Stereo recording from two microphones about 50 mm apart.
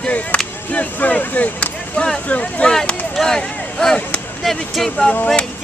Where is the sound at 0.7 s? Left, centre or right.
Left.